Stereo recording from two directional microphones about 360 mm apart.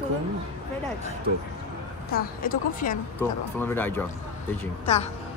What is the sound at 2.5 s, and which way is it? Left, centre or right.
Speech, left.